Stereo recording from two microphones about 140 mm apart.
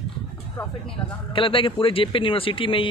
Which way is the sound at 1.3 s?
40° left (ahead or behind).